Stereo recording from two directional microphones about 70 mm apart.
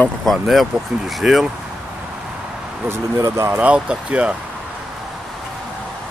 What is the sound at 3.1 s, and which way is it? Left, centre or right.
Speech, right.